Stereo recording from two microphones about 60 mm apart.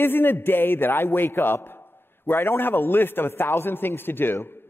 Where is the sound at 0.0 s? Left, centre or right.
Left.